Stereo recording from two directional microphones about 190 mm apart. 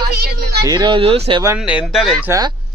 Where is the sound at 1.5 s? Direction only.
5° right (ahead or behind).